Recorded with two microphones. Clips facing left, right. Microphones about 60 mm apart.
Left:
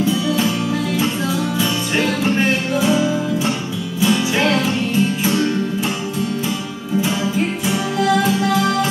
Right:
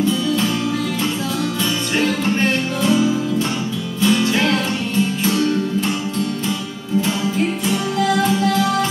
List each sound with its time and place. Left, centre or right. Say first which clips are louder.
0.0 s music: even; centre
1.6 s music: right 1 dB; centre
7.0 s music: even; centre